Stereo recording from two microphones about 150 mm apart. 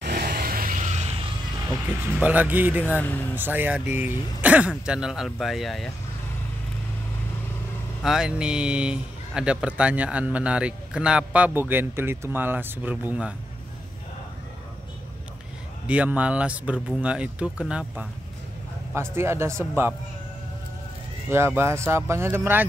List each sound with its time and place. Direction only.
0.0 s vehicle: 85° right
0.7 s a sound: 50° right (ahead or behind)
1.7 s a man's voice: 10° right (ahead or behind)
8.0 s a man's voice: 5° right (ahead or behind)
15.9 s a man's voice: 10° right (ahead or behind)
18.9 s a man's voice: 15° right (ahead or behind)
21.3 s a man's voice: 15° right (ahead or behind)